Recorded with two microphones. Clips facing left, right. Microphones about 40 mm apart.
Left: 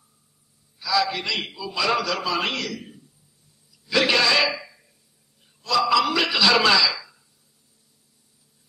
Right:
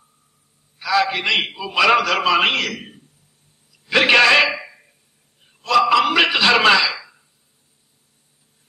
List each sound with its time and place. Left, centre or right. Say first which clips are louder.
0.7 s a man's voice: right 4 dB; right
3.7 s a sound: right 6 dB; right
5.9 s music: right 5 dB; right